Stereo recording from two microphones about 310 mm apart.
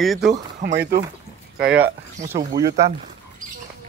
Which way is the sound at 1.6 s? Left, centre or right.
Centre.